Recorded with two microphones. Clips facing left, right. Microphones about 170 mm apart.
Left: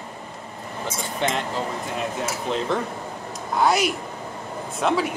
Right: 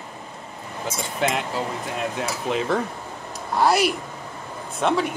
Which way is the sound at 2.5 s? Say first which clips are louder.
Right 2 dB; 5° right (ahead or behind).